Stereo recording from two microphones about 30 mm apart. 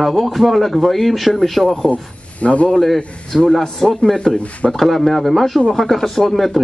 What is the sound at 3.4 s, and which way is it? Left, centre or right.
A man's voice, centre.